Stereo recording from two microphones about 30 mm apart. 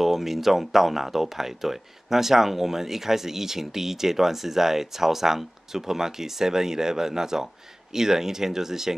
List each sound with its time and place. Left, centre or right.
0.0 s speech: centre